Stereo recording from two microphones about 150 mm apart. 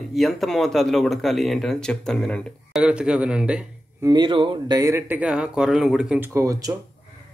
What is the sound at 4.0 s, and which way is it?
Speech, 30° right (ahead or behind).